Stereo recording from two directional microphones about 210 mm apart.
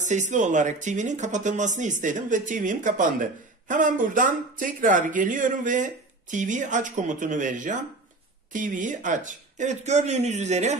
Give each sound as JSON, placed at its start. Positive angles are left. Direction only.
{"t": 0.0, "sound": "speech", "side_deg": -35}